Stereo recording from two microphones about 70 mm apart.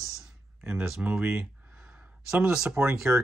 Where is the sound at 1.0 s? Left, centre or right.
Right.